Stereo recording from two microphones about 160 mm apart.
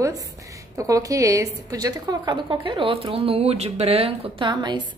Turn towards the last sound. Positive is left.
turn(degrees=-30)  # may be behind; listen again after turning